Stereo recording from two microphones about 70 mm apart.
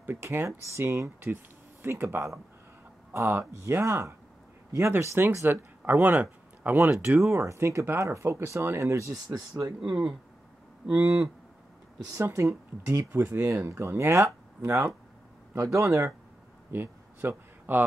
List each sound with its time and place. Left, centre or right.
0.0 s speech: right
0.8 s speech: right
6.9 s speech: right
9.1 s speech: right
9.8 s speech: centre
12.1 s speech: right
13.1 s speech: right
13.4 s speech: right
15.5 s speech: right
16.7 s a sound: right